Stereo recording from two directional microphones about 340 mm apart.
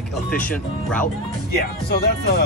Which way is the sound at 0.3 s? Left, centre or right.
Centre.